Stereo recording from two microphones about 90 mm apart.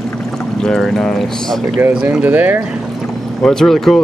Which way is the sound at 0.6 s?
5° left (ahead or behind).